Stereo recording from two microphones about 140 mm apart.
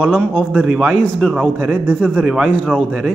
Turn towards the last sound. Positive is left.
turn(degrees=-5)  # may be behind; listen again after turning